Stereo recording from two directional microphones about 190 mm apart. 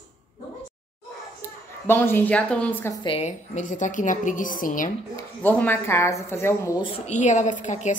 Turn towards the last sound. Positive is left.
turn(degrees=40)  # may be behind; listen again after turning